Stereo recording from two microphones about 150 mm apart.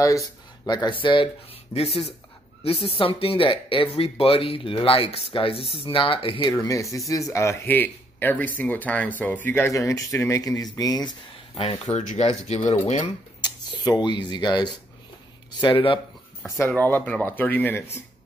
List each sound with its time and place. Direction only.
0.7 s speech: 30° left (ahead or behind)
6.5 s speech: 20° left (ahead or behind)
11.5 s speech: 40° left (ahead or behind)
13.4 s speech: 30° left (ahead or behind)
16.4 s speech: 15° left (ahead or behind)